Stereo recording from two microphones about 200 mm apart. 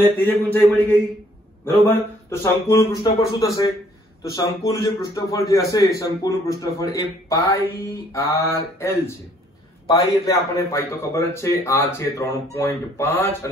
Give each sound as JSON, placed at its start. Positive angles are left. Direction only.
{"t": 0.0, "sound": "a man's voice", "side_deg": 10}
{"t": 1.7, "sound": "a man's voice", "side_deg": 10}